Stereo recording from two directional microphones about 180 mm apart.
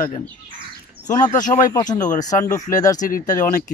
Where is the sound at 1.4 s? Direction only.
45° left (ahead or behind).